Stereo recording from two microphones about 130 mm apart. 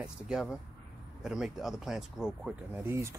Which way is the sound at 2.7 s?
20° right (ahead or behind).